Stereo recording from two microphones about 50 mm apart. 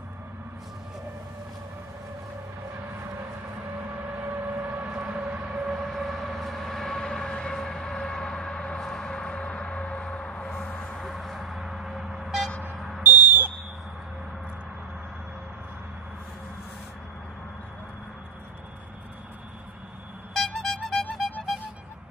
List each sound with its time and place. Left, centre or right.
4.2 s vehicle: right
5.1 s train: right
5.9 s train: centre
8.8 s a sound: centre
10.7 s music: left
11.0 s music: centre
11.5 s vehicle: centre
12.7 s a sound: centre
13.0 s a sound: right
20.3 s music: centre